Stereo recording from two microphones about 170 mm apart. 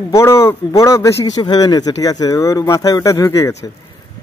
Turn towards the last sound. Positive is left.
turn(degrees=15)  # may be behind; listen again after turning